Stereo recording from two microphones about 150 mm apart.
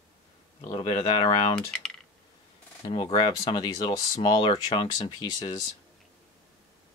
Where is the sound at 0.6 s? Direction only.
30° left (ahead or behind).